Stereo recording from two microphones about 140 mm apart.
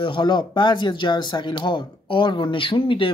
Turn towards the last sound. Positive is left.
turn(degrees=40)  # may be behind; listen again after turning